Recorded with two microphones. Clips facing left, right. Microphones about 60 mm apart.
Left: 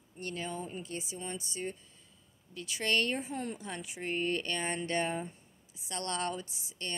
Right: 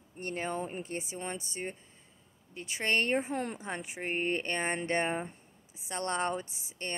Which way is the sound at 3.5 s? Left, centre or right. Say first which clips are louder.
Right 3 dB; right.